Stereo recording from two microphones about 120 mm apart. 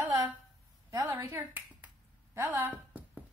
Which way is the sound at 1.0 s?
15° right (ahead or behind).